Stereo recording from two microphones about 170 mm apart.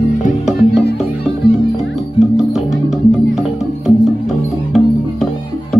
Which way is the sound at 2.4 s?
Centre (ahead or behind).